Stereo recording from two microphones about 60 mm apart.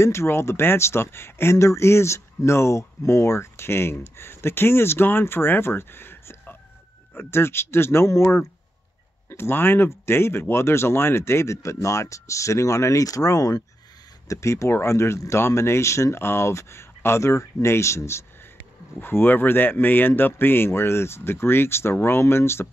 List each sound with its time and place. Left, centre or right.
0.0 s speech: left
14.2 s speech: left
18.9 s speech: left